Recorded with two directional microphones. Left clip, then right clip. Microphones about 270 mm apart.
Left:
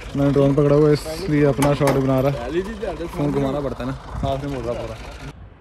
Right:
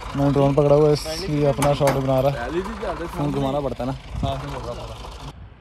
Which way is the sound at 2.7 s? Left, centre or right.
Right.